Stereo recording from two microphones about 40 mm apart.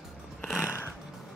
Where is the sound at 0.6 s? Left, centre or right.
Left.